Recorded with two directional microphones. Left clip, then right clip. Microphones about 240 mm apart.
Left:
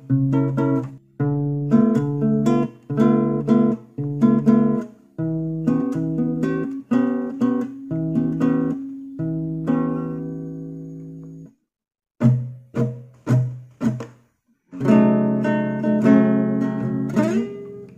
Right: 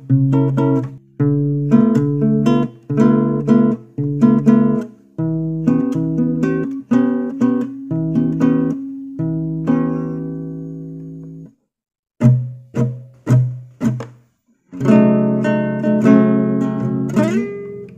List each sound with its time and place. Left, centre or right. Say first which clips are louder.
0.1 s music: right 4 dB; right
12.7 s music: right 3 dB; right